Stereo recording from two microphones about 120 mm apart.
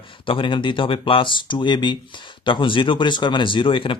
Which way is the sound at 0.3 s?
45° left (ahead or behind).